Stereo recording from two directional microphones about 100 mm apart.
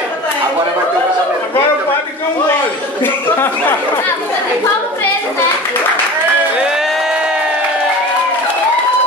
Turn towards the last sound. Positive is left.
turn(degrees=-5)  # may be behind; listen again after turning